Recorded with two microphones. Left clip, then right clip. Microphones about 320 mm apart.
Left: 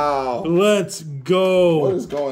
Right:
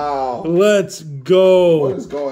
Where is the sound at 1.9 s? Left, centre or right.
Left.